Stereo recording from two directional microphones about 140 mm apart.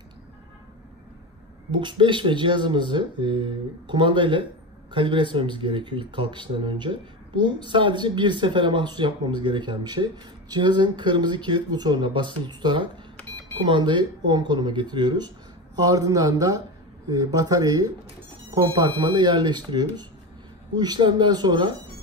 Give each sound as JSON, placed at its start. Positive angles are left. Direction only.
{"t": 1.7, "sound": "speech", "side_deg": -35}